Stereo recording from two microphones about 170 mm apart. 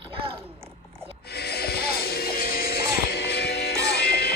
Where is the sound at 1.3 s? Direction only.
70° left (ahead or behind).